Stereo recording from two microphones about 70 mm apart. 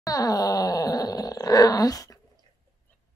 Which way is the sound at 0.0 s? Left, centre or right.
Left.